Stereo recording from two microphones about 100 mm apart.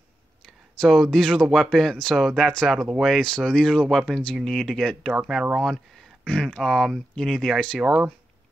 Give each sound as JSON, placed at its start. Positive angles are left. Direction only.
{"t": 0.5, "sound": "speech", "side_deg": 0}
{"t": 7.8, "sound": "speech", "side_deg": -10}